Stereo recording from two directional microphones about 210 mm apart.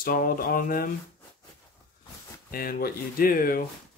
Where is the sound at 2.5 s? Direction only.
45° left (ahead or behind).